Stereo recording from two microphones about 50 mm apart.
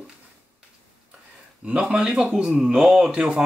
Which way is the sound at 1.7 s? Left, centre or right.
Right.